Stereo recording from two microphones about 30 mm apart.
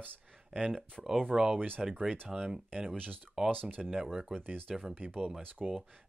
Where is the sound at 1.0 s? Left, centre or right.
Centre.